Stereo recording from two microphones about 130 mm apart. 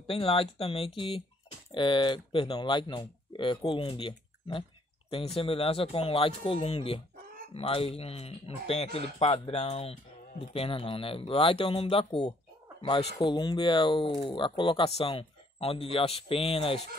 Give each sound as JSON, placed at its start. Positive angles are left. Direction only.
{"t": 0.0, "sound": "speech", "side_deg": 45}